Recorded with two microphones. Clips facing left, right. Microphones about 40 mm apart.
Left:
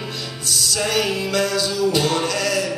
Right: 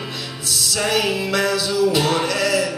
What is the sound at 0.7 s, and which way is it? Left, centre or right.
Music, centre.